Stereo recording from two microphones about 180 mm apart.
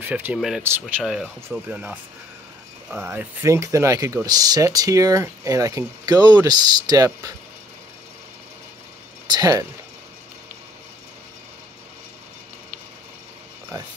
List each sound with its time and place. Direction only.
0.0 s speech: 10° right (ahead or behind)
9.3 s speech: 20° right (ahead or behind)